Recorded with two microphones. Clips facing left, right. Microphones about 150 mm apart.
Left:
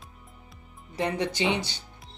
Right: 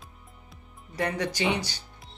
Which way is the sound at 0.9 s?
25° left (ahead or behind).